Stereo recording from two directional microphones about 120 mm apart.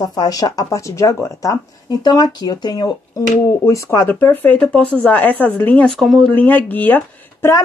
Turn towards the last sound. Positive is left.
turn(degrees=20)  # may be behind; listen again after turning